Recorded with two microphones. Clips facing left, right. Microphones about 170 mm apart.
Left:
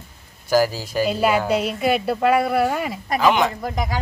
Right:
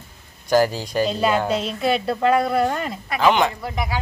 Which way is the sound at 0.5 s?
5° left (ahead or behind).